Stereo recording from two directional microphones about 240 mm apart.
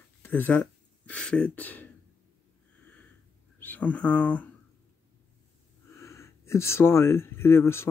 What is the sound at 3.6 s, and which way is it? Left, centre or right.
Speech, centre.